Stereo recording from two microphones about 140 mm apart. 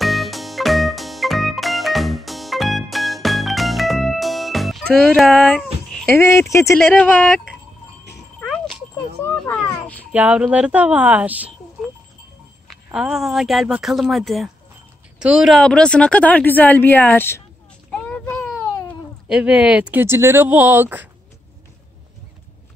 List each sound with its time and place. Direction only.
0.0 s music: centre (ahead or behind)
6.1 s speech: 20° left (ahead or behind)
6.9 s speech: 10° left (ahead or behind)
8.4 s jingle: 5° left (ahead or behind)
9.3 s a sound: 10° left (ahead or behind)
10.1 s speech: 10° right (ahead or behind); by 17.4 s 15° left (ahead or behind)
18.0 s baby cry: 10° left (ahead or behind)
19.2 s speech: 5° right (ahead or behind)